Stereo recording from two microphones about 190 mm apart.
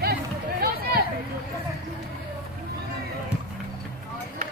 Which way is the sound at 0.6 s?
55° right (ahead or behind).